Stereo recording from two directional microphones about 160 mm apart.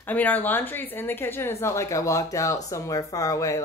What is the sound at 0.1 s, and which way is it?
Speech, 10° left (ahead or behind).